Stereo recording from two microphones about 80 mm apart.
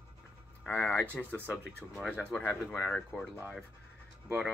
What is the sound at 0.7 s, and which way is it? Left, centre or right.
Speech, left.